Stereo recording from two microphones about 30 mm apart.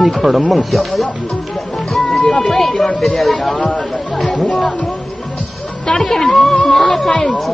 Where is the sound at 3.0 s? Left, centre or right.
Centre.